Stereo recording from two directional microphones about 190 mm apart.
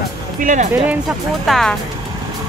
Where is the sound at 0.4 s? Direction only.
40° right (ahead or behind).